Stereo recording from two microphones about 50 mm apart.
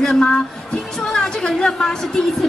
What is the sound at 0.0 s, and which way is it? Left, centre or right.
Speech, centre.